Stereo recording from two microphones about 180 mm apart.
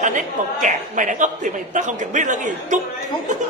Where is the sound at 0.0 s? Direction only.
45° right (ahead or behind).